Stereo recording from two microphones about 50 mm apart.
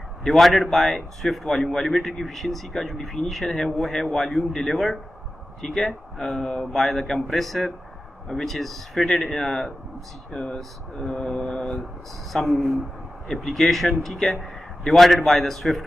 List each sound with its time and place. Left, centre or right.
0.2 s a man's voice: centre
12.3 s a man's voice: centre